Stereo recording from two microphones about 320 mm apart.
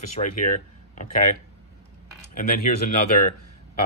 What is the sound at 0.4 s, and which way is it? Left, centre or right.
Speech, left.